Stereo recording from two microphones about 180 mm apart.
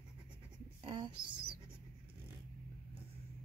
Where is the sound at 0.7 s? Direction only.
25° right (ahead or behind).